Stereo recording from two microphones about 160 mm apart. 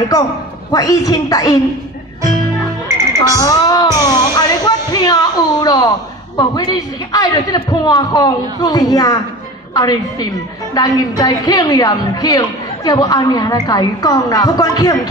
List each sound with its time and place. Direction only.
0.7 s a woman's voice: 25° left (ahead or behind)
3.3 s a woman's voice: 20° left (ahead or behind)